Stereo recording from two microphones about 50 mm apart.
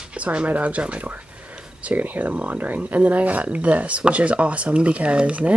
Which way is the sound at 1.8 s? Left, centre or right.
Right.